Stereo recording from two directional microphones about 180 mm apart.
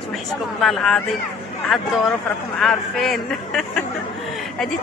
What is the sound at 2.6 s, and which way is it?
Speech, centre (ahead or behind).